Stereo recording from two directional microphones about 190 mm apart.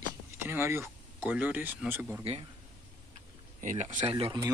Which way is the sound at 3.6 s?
40° right (ahead or behind).